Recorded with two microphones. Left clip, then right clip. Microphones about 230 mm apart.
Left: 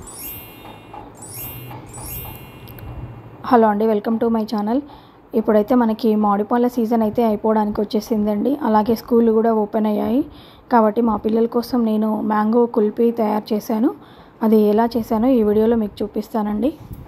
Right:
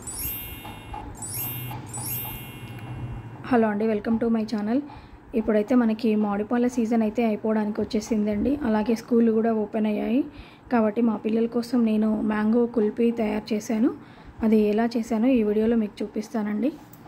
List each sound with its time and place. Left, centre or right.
3.4 s a woman's voice: centre